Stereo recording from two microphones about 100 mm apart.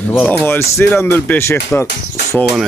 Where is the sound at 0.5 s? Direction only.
25° left (ahead or behind).